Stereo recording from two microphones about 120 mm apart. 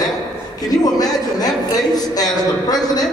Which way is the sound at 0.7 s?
30° left (ahead or behind).